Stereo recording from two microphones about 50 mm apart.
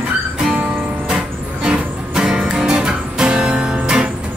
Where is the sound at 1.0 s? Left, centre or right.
Centre.